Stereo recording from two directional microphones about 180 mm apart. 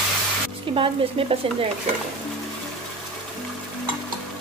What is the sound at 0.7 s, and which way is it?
Speech, 30° right (ahead or behind).